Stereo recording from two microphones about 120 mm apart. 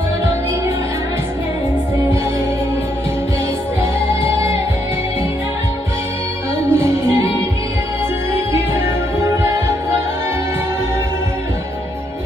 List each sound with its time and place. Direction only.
4.1 s music: 25° right (ahead or behind)
6.7 s music: 20° right (ahead or behind)
8.8 s music: 25° right (ahead or behind)